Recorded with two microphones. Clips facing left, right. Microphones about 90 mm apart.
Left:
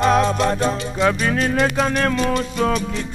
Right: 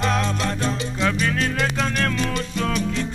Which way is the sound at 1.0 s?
20° left (ahead or behind).